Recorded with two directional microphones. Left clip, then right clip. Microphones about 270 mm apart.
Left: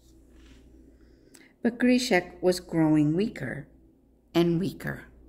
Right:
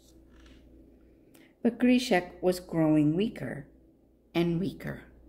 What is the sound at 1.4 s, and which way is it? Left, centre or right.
Speech, centre.